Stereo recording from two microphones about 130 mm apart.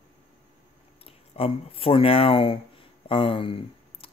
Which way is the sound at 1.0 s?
50° left (ahead or behind).